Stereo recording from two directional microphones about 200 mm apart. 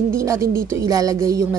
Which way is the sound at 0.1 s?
15° right (ahead or behind).